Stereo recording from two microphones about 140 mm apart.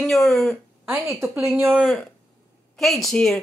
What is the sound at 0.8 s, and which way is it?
A woman's voice, 20° right (ahead or behind).